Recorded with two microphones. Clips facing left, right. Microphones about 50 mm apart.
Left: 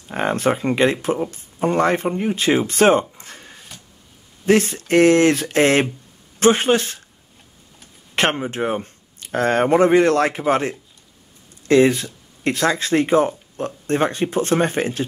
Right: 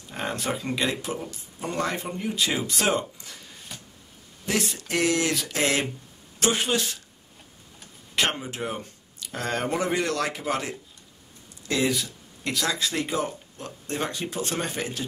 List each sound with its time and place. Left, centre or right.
0.1 s speech: left
8.2 s speech: left